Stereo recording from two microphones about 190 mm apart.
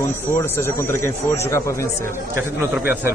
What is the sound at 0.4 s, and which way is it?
Speech, 15° left (ahead or behind).